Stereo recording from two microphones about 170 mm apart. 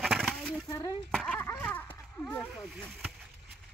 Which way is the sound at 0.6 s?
20° left (ahead or behind).